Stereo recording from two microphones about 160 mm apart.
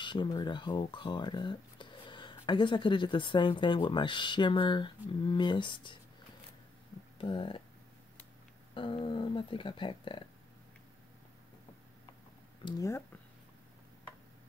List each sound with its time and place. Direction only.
0.0 s speech: 30° left (ahead or behind)
7.2 s speech: 30° left (ahead or behind)
8.7 s speech: 30° left (ahead or behind)
12.6 s speech: 20° left (ahead or behind)